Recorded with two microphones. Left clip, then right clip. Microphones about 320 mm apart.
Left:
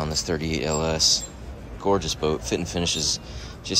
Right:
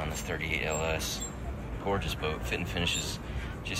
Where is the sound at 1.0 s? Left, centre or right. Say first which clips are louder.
Left 15 dB; left.